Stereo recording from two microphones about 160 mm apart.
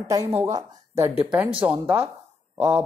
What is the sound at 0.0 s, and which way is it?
A woman's voice, 20° right (ahead or behind).